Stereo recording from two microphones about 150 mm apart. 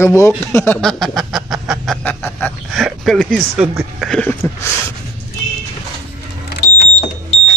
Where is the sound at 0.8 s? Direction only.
5° left (ahead or behind).